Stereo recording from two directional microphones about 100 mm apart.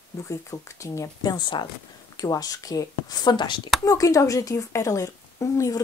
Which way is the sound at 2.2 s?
35° left (ahead or behind).